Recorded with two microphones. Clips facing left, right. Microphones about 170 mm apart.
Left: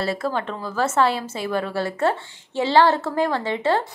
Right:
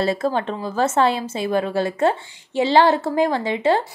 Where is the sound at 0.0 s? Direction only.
20° right (ahead or behind).